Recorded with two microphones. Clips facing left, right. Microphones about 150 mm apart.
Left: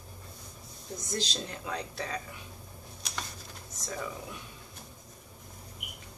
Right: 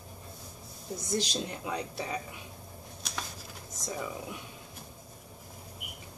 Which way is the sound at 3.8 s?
15° right (ahead or behind).